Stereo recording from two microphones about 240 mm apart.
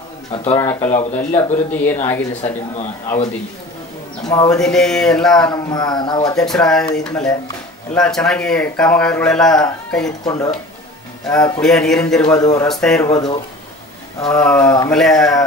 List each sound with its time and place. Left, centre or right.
0.3 s speech: left
4.2 s speech: centre
4.6 s speech: centre
5.5 s speech: centre
6.3 s speech: centre
10.2 s speech: centre
11.6 s speech: centre
13.1 s speech: centre
14.4 s speech: centre